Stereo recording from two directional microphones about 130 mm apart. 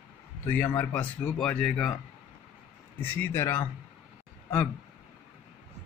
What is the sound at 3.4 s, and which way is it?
Speech, 20° left (ahead or behind).